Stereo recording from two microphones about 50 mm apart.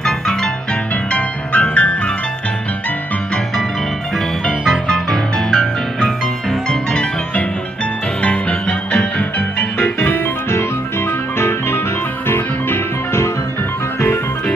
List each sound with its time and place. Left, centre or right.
0.0 s music: centre
1.1 s music: left
4.5 s music: centre
5.1 s music: centre
8.2 s music: left
11.3 s music: left